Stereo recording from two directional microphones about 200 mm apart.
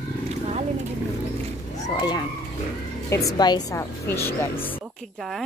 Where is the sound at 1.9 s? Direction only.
20° left (ahead or behind).